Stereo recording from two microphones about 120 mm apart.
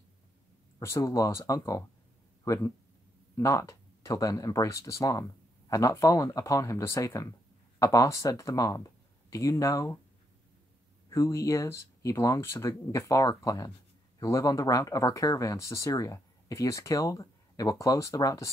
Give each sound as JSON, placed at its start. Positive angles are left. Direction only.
{"t": 0.7, "sound": "speech", "side_deg": 25}
{"t": 11.1, "sound": "speech", "side_deg": 25}